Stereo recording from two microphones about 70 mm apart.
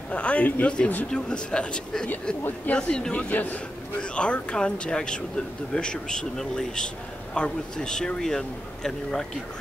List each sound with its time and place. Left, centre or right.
0.1 s a man's voice: centre